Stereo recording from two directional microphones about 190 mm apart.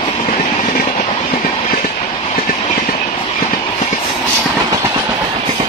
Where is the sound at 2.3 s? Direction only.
40° left (ahead or behind).